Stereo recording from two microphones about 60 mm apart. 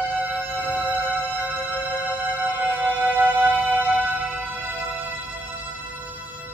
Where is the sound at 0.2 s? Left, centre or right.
Right.